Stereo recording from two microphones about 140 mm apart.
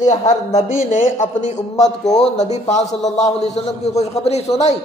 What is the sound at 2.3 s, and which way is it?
A woman's voice, 55° left (ahead or behind).